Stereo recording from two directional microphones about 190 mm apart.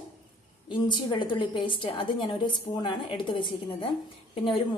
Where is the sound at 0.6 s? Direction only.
25° left (ahead or behind).